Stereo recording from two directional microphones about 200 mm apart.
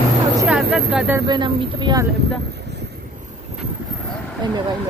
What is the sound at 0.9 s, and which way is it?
Speech, 10° right (ahead or behind).